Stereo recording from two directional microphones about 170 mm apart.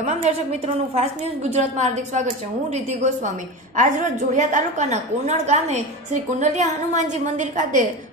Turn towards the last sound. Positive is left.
turn(degrees=-50)  # may be behind; listen again after turning